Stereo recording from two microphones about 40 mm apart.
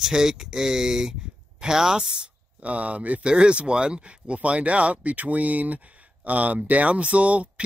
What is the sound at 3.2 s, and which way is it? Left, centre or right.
Speech, right.